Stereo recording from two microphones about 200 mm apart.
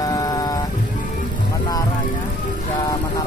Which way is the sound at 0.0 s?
20° left (ahead or behind).